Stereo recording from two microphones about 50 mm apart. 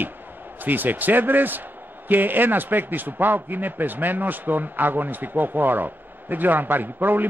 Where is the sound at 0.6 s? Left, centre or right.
Right.